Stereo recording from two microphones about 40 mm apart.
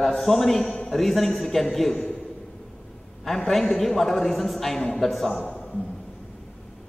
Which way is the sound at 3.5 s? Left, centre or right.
Centre.